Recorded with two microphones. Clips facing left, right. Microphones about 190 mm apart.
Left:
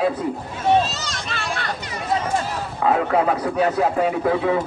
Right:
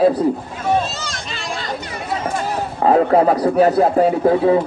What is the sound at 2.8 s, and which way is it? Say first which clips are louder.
Speech: right 6 dB; 35° right (ahead or behind).